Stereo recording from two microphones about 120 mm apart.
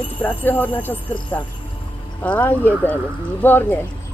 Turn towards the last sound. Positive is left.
turn(degrees=15)  # may be behind; listen again after turning